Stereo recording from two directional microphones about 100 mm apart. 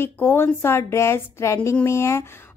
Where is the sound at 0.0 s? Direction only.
25° left (ahead or behind).